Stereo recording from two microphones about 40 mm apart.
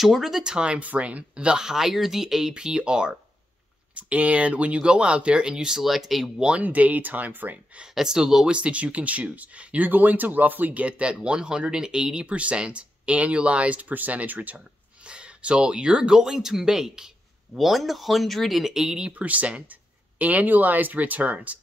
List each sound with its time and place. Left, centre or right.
0.0 s speech: centre
0.4 s speech: right
0.7 s speech: right
3.9 s speech: right
5.8 s speech: centre
6.3 s speech: right
6.6 s speech: right
7.9 s speech: centre
8.5 s speech: right
9.8 s speech: right
13.9 s speech: right
15.0 s speech: right; by 18.6 s centre
18.6 s speech: centre
18.9 s speech: right